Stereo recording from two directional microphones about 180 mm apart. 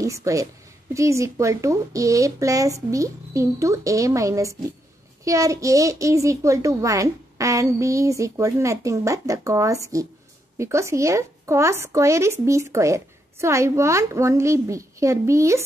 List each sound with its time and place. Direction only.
0.0 s a woman's voice: 15° right (ahead or behind)